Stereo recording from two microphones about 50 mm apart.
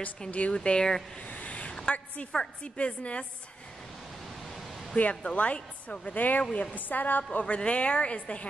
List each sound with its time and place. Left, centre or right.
0.3 s speech: left
0.6 s speech: centre
1.2 s a sound: left
2.3 s speech: left
4.9 s a woman's voice: left
7.3 s speech: left